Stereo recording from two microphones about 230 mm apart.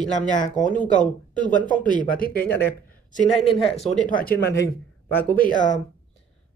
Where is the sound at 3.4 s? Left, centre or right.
Left.